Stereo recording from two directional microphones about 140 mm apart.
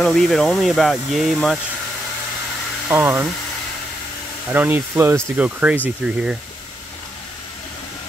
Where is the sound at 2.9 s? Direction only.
15° right (ahead or behind).